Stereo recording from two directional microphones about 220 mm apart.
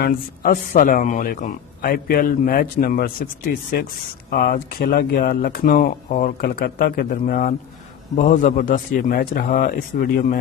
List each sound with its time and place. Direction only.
0.0 s speech: 40° left (ahead or behind)